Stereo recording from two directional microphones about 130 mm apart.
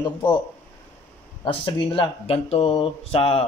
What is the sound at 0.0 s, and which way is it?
Speech, 40° left (ahead or behind).